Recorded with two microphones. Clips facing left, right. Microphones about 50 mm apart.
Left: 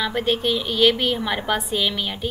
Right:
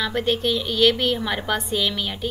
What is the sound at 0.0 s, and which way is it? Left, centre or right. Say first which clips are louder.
A woman's voice: even; centre.